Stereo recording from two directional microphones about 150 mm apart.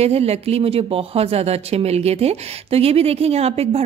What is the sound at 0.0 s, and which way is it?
Speech, 45° right (ahead or behind).